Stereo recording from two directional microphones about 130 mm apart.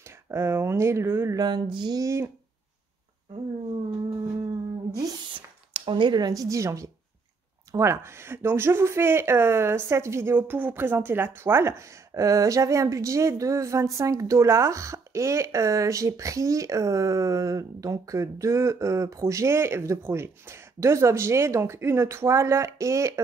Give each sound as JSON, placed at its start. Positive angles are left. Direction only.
{"t": 0.3, "sound": "speech", "side_deg": -20}
{"t": 1.4, "sound": "speech", "side_deg": -35}
{"t": 5.7, "sound": "speech", "side_deg": -40}